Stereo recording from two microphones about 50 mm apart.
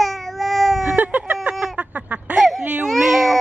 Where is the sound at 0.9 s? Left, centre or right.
Right.